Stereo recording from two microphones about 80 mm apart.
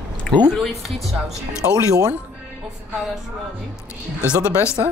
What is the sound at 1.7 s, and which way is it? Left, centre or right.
Speech, right.